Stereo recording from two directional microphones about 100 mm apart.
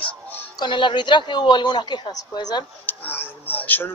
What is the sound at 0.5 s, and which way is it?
A woman's voice, 50° left (ahead or behind).